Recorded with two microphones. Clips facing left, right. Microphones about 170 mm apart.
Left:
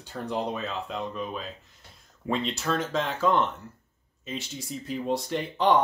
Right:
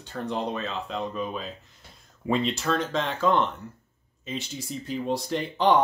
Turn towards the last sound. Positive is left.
turn(degrees=0)  # may be behind; listen again after turning